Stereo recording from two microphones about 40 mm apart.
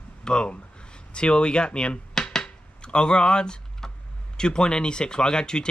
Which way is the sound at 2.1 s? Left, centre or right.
Centre.